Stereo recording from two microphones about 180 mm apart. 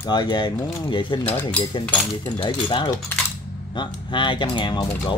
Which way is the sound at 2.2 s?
25° left (ahead or behind).